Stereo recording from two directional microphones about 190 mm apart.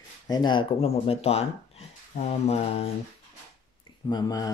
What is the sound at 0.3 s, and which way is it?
Speech, 20° left (ahead or behind).